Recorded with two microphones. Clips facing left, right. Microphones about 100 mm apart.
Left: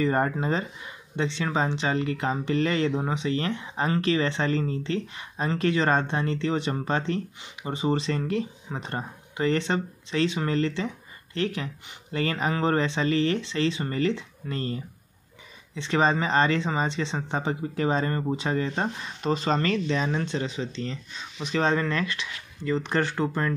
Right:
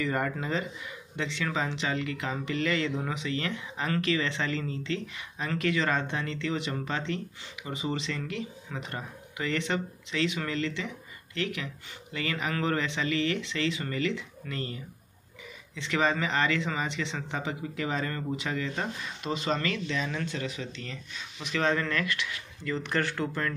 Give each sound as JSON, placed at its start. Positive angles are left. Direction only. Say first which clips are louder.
{"t": 0.0, "sound": "speech", "louder": "left 6 dB", "side_deg": 35}